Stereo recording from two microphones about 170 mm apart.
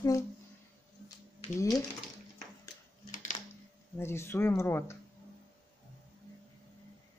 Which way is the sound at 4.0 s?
15° left (ahead or behind).